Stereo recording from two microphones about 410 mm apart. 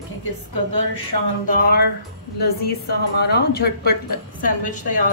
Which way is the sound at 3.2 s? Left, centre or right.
Left.